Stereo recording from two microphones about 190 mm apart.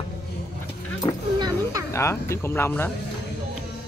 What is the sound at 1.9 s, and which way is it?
Speech, 15° left (ahead or behind).